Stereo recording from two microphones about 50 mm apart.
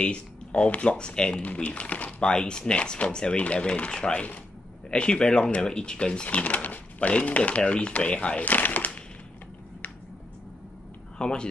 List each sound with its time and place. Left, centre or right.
0.0 s speech: left
1.4 s speech: left
6.2 s speech: left
11.1 s speech: centre